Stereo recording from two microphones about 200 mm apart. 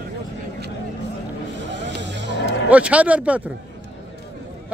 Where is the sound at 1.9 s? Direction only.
60° right (ahead or behind).